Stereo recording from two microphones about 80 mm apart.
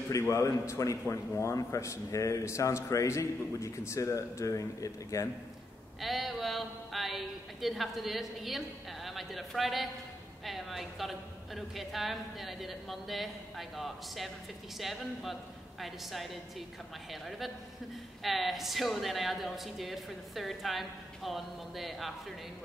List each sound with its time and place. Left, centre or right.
0.1 s a man's voice: left
5.9 s a sound: centre
10.4 s speech: centre
18.2 s speech: centre